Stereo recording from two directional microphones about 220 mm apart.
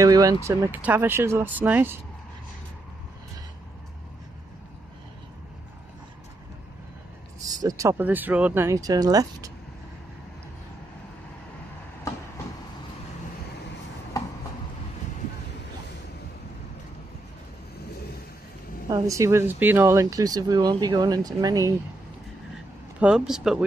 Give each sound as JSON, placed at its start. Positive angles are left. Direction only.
{"t": 0.0, "sound": "speech", "side_deg": -15}
{"t": 7.4, "sound": "speech", "side_deg": -15}
{"t": 12.1, "sound": "train", "side_deg": 15}
{"t": 14.2, "sound": "chopping", "side_deg": 15}
{"t": 18.9, "sound": "speech", "side_deg": -15}
{"t": 22.9, "sound": "speech", "side_deg": -5}